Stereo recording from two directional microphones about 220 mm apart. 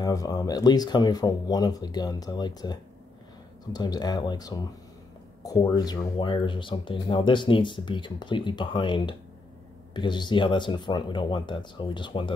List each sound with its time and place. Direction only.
0.0 s speech: 15° left (ahead or behind)